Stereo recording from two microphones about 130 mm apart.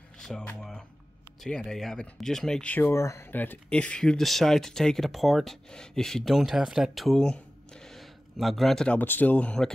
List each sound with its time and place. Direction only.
0.2 s a sound: 5° left (ahead or behind)
1.4 s speech: 5° left (ahead or behind)
8.9 s speech: 15° left (ahead or behind)